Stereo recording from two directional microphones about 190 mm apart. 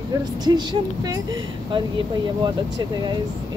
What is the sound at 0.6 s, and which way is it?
Speech, 20° right (ahead or behind).